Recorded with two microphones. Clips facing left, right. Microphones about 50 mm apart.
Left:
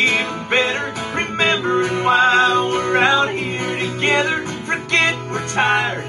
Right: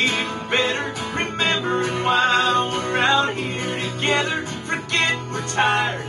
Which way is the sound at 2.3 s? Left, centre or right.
Left.